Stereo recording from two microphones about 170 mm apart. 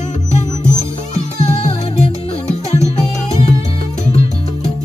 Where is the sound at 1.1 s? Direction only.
40° left (ahead or behind).